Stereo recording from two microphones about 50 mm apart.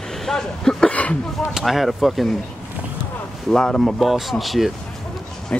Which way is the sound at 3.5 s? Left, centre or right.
Centre.